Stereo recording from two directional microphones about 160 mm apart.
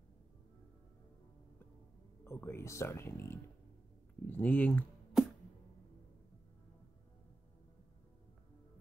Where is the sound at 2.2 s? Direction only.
15° left (ahead or behind).